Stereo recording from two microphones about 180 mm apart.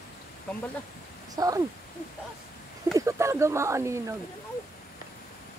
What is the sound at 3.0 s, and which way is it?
Speech, 15° right (ahead or behind).